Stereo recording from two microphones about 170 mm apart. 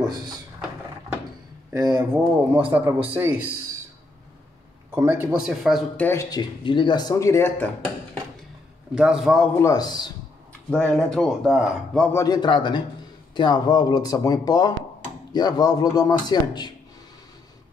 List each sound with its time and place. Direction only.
1.8 s speech: 25° right (ahead or behind)
2.5 s a man's voice: 10° right (ahead or behind)
4.9 s speech: 15° right (ahead or behind)
5.9 s speech: 15° left (ahead or behind)
6.6 s speech: 30° left (ahead or behind); by 8.2 s 10° left (ahead or behind)
8.9 s speech: 5° right (ahead or behind)
9.6 s speech: 20° left (ahead or behind)
10.7 s speech: 5° left (ahead or behind)
12.1 s speech: 20° left (ahead or behind)